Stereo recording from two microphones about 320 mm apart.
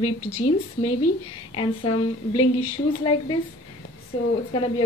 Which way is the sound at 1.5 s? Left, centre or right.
Centre.